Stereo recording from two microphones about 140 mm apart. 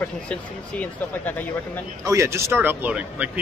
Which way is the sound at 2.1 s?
20° right (ahead or behind).